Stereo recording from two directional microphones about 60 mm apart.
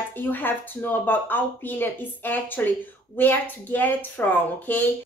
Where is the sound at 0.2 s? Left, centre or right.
Left.